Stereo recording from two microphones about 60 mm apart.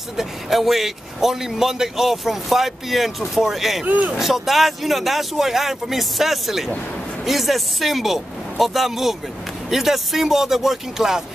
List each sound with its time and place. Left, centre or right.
0.2 s a man's voice: centre
3.8 s speech: right
4.1 s a man's voice: centre